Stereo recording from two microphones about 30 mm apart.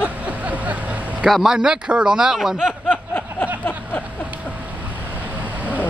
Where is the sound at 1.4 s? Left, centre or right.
Right.